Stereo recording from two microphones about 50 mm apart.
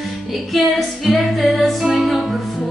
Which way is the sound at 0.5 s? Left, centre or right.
Centre.